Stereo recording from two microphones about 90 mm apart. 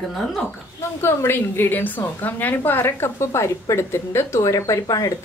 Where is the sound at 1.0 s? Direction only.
25° left (ahead or behind).